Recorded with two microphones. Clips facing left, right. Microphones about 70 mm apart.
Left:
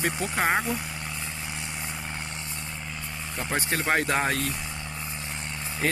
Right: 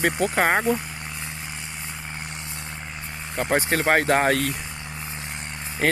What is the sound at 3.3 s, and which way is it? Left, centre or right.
Speech, right.